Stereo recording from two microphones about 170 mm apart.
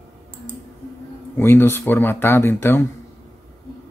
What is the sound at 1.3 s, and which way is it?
Speech, 15° left (ahead or behind).